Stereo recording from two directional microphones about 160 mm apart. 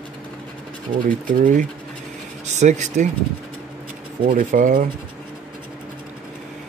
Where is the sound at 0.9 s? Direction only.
55° right (ahead or behind).